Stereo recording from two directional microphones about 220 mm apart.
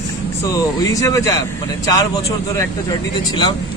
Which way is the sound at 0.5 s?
15° left (ahead or behind).